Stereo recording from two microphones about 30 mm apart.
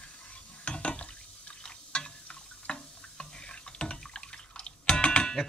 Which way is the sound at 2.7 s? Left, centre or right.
Left.